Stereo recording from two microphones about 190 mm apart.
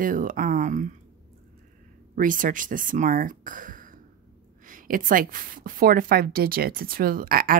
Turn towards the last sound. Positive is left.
turn(degrees=-50)  # may be behind; listen again after turning